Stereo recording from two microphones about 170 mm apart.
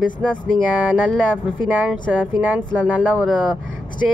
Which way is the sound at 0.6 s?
10° right (ahead or behind).